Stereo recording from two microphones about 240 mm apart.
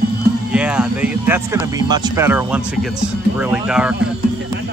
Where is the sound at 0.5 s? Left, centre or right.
Centre.